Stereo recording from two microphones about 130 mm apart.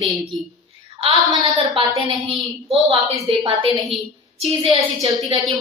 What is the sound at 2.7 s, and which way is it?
A woman's voice, 45° right (ahead or behind).